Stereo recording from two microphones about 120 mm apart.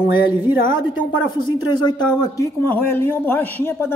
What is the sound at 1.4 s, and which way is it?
Speech, 40° left (ahead or behind).